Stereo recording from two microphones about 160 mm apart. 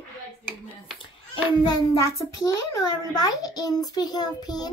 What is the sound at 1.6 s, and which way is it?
A child's voice, 20° left (ahead or behind).